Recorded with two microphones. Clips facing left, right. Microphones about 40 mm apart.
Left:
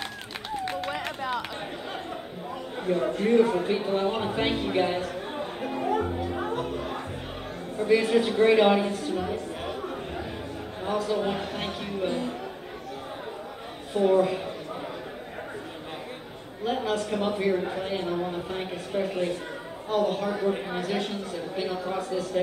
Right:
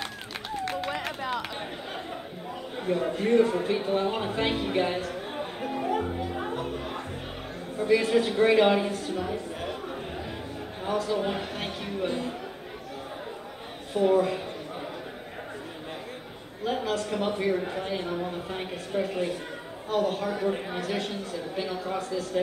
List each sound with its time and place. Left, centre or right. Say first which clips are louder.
0.7 s run: right 1 dB; centre
2.8 s a man's voice: left 1 dB; centre
5.6 s music: left 2 dB; centre
7.7 s a woman's voice: left 1 dB; centre
13.9 s a man's voice: left 1 dB; centre
16.6 s a man's voice: left 1 dB; centre